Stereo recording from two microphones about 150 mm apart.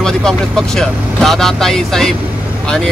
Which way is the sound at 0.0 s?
5° left (ahead or behind).